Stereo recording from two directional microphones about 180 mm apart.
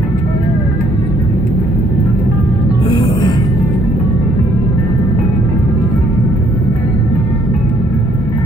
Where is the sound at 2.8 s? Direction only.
25° left (ahead or behind).